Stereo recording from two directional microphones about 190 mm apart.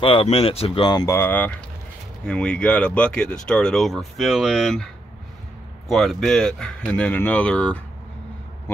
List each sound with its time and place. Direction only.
0.0 s speech: 30° left (ahead or behind)
1.0 s speech: 10° left (ahead or behind)
5.9 s speech: centre (ahead or behind)